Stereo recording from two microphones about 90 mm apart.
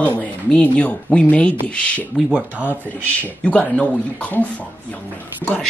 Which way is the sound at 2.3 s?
15° right (ahead or behind).